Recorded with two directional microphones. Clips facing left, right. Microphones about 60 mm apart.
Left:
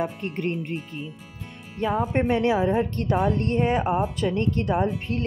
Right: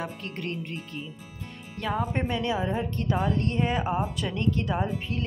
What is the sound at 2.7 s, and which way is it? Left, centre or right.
A woman's voice, left.